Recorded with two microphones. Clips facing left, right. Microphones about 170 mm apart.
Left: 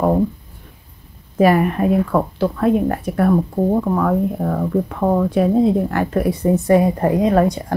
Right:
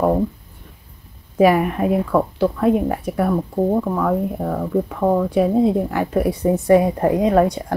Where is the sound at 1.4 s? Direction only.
10° right (ahead or behind).